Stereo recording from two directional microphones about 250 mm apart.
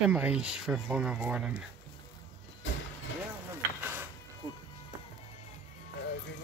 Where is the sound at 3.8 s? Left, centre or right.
Centre.